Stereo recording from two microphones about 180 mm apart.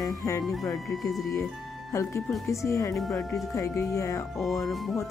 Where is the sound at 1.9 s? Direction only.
15° left (ahead or behind).